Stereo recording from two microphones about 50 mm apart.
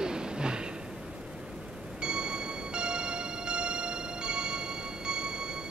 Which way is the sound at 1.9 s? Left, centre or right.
Centre.